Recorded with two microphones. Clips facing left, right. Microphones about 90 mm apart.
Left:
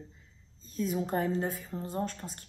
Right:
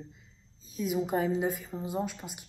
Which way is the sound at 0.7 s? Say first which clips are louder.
Right 1 dB; 5° right (ahead or behind).